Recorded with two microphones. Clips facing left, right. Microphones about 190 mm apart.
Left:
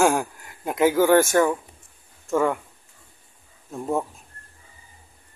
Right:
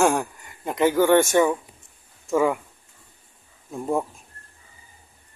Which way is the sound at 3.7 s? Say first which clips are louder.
Right 1 dB; centre (ahead or behind).